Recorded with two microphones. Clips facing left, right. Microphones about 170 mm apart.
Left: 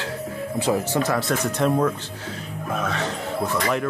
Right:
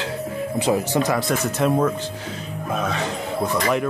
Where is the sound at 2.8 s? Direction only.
15° right (ahead or behind).